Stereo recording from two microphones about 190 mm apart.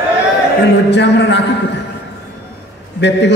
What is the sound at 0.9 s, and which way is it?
Speech, 65° left (ahead or behind).